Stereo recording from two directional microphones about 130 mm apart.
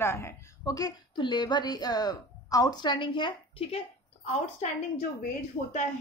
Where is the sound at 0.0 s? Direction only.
20° left (ahead or behind); by 3.8 s 40° left (ahead or behind).